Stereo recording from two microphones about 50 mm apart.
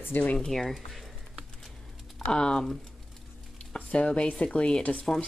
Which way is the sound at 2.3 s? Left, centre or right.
Centre.